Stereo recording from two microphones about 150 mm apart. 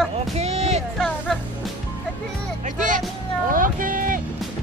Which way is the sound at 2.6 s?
55° right (ahead or behind).